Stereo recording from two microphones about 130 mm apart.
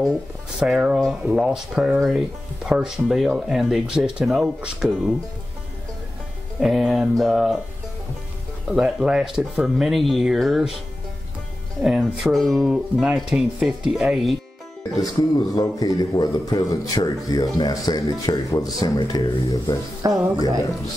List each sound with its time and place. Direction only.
0.6 s speech: 5° right (ahead or behind)
6.6 s speech: 5° right (ahead or behind)
8.6 s speech: 5° right (ahead or behind)
11.8 s speech: centre (ahead or behind)
15.0 s a man's voice: 30° left (ahead or behind)
20.0 s speech: 30° right (ahead or behind)